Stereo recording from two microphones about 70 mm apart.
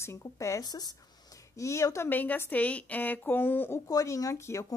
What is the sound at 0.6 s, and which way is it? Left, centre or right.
Speech, left.